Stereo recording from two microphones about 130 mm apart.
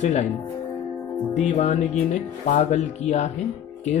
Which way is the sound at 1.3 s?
60° left (ahead or behind).